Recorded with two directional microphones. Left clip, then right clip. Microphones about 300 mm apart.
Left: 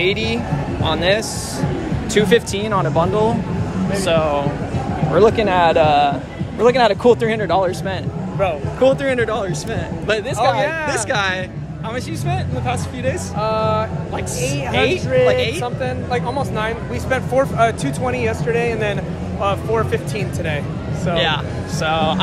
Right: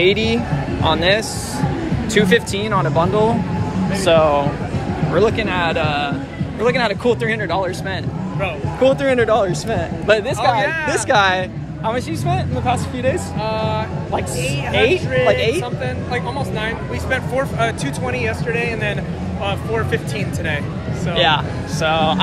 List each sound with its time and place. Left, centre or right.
0.0 s speech: centre
5.1 s speech: centre
8.8 s speech: centre
10.6 s speech: centre
10.9 s speech: centre
13.4 s speech: centre
15.2 s speech: centre
15.8 s speech: centre
21.2 s speech: centre